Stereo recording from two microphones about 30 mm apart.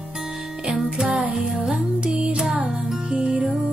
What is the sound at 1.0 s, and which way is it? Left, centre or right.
Music, right.